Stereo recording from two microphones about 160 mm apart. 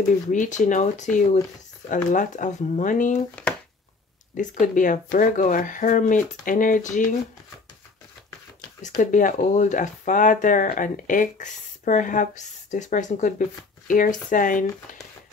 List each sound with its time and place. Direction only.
0.3 s speech: 50° left (ahead or behind)
3.4 s speech: 10° left (ahead or behind)
4.4 s speech: 55° left (ahead or behind)
9.0 s speech: 55° left (ahead or behind)